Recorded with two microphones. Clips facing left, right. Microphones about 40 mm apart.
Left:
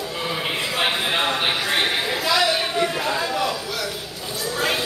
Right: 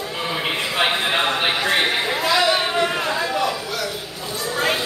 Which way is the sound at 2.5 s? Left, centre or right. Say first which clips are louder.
Right 3 dB; right.